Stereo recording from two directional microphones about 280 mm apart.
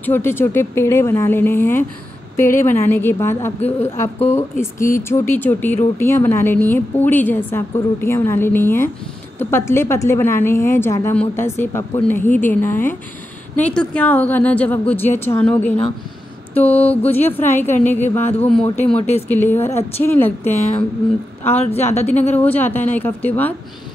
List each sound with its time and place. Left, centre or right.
0.0 s a woman's voice: centre
18.9 s speech: left
19.2 s a woman's voice: centre
21.5 s speech: left
22.2 s a woman's voice: centre